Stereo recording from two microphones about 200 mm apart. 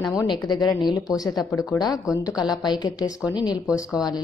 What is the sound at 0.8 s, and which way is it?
A woman's voice, 20° left (ahead or behind).